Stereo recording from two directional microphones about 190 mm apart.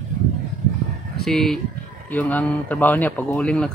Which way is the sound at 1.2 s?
Centre (ahead or behind).